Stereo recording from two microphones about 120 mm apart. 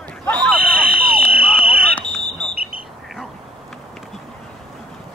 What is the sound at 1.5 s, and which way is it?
Fire alarm, 15° left (ahead or behind).